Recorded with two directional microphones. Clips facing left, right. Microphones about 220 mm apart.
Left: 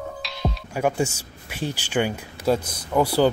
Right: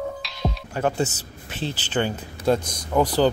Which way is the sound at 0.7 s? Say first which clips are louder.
Left 1 dB; 10° left (ahead or behind).